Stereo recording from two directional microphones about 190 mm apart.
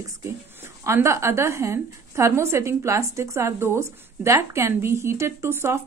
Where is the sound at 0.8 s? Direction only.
15° right (ahead or behind).